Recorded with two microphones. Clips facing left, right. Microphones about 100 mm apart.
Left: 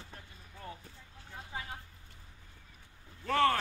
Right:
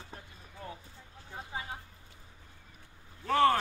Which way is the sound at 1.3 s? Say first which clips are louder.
Right 3 dB; 25° right (ahead or behind).